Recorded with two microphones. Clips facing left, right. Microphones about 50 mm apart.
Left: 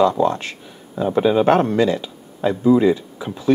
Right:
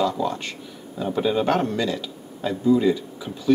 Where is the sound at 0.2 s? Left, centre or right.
Centre.